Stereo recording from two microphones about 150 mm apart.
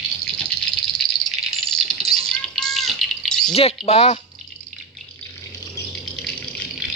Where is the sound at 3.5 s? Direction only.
40° left (ahead or behind).